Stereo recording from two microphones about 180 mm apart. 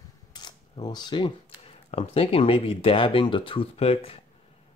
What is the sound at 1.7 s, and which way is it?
Speech, 35° left (ahead or behind).